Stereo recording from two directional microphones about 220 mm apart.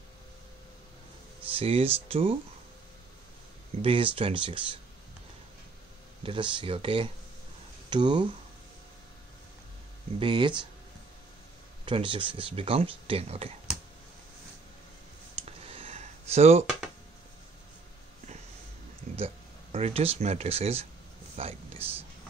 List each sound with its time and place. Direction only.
1.5 s speech: 25° right (ahead or behind)
3.8 s speech: 25° right (ahead or behind)
6.2 s speech: 20° right (ahead or behind)
10.1 s speech: 20° right (ahead or behind)
11.8 s speech: 20° right (ahead or behind)
15.4 s a sound: 25° right (ahead or behind)
19.1 s speech: 25° right (ahead or behind)
21.4 s a sound: 25° right (ahead or behind)